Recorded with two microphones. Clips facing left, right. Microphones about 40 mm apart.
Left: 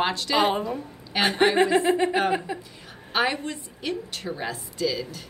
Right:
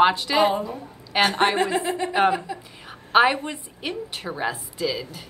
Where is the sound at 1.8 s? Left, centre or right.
Left.